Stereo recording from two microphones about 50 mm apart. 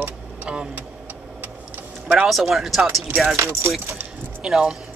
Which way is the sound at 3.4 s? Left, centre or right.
Right.